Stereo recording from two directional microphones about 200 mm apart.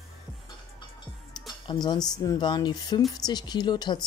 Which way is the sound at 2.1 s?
20° left (ahead or behind).